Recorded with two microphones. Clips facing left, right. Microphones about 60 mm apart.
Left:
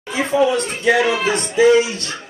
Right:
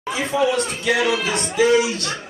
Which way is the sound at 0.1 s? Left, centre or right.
Left.